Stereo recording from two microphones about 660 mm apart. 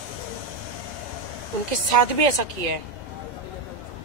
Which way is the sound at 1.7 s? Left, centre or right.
Right.